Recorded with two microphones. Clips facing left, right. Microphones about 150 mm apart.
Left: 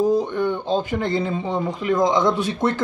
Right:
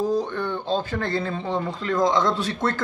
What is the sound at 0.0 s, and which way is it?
Speech, 15° left (ahead or behind).